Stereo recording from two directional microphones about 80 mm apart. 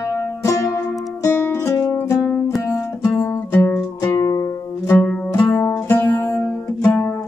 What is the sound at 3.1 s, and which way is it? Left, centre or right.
Music, centre.